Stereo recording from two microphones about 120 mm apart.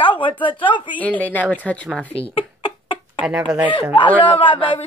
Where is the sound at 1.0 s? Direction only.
15° left (ahead or behind).